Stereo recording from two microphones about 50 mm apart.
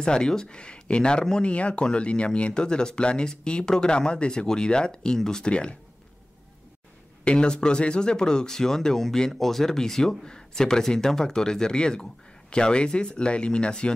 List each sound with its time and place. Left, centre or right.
0.0 s speech: centre
7.2 s speech: centre